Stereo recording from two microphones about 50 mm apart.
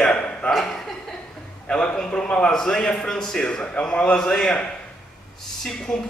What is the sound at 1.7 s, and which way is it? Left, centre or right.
Speech, centre.